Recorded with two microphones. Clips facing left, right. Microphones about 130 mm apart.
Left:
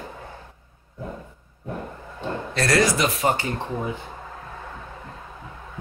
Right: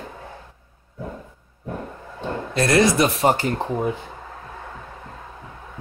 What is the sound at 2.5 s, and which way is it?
Speech, 20° right (ahead or behind).